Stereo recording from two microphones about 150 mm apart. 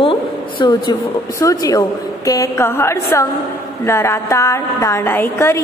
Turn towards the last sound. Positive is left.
turn(degrees=15)  # may be behind; listen again after turning